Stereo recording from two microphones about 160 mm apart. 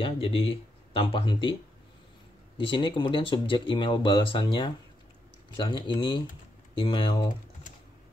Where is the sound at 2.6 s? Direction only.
30° left (ahead or behind).